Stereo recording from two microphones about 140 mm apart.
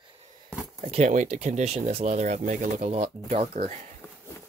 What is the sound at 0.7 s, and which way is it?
Speech, 55° right (ahead or behind).